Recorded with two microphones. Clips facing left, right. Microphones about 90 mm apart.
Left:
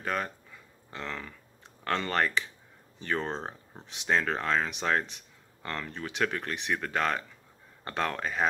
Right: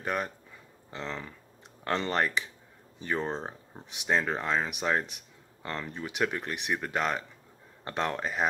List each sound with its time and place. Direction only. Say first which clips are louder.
0.0 s speech: even; 15° right (ahead or behind)